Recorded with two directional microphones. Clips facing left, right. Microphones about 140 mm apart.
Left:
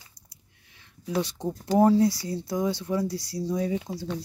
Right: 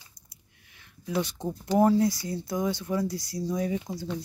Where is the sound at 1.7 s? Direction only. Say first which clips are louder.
Left 2 dB; 30° left (ahead or behind).